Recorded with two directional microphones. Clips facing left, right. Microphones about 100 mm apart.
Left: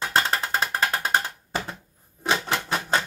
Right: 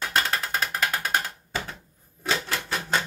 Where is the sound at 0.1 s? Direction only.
30° left (ahead or behind).